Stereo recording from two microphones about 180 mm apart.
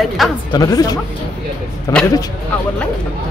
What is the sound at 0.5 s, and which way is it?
Mantra, 20° left (ahead or behind).